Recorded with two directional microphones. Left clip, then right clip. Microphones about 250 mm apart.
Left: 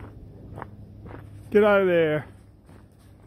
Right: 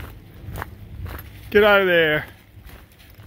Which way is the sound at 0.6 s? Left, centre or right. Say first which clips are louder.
Right 7 dB; right.